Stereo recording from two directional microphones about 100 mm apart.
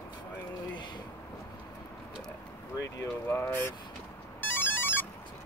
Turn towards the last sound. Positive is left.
turn(degrees=20)  # may be behind; listen again after turning